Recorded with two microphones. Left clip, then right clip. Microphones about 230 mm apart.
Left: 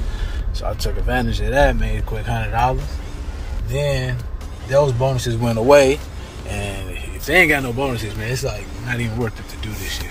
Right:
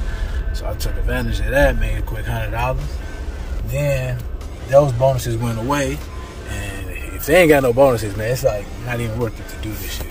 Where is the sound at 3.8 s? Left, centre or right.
Centre.